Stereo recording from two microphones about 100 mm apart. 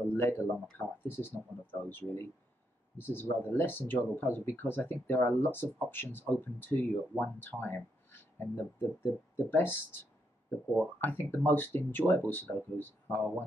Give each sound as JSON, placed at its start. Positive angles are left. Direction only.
{"t": 0.2, "sound": "speech", "side_deg": 20}
{"t": 11.1, "sound": "speech", "side_deg": 20}